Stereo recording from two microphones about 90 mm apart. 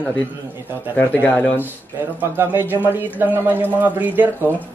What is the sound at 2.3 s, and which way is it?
Speech, 25° right (ahead or behind).